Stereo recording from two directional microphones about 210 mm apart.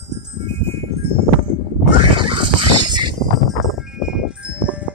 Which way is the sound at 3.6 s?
Centre (ahead or behind).